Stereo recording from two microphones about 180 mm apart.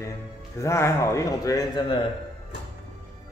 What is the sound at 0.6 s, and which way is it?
Speech, 15° left (ahead or behind).